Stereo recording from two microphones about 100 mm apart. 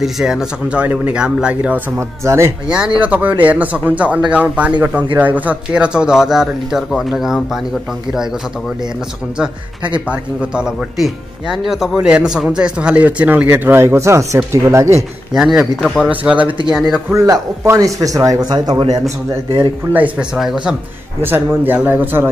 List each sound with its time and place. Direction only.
0.0 s speech: 5° right (ahead or behind)
2.0 s speech: 25° right (ahead or behind)
2.7 s speech: 10° right (ahead or behind)
10.0 s speech: 10° right (ahead or behind)
13.5 s speech: 25° right (ahead or behind)
15.3 s speech: 5° right (ahead or behind)
16.4 s speech: 55° right (ahead or behind)
17.1 s speech: 30° right (ahead or behind)
19.9 s speech: 15° right (ahead or behind)
21.2 s speech: 20° right (ahead or behind)